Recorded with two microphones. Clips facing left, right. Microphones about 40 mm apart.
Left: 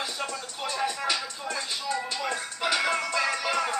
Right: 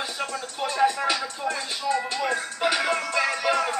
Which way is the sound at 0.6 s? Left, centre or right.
Centre.